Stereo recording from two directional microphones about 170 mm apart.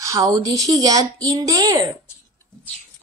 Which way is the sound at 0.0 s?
20° right (ahead or behind).